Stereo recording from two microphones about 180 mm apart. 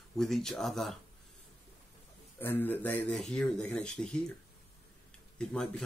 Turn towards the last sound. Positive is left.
turn(degrees=5)  # may be behind; listen again after turning